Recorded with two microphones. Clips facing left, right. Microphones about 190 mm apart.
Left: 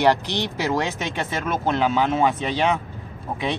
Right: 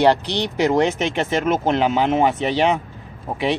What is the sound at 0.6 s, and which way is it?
Speech, 20° right (ahead or behind).